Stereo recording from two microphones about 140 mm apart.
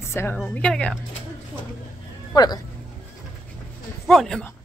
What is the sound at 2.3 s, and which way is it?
Speech, 30° left (ahead or behind).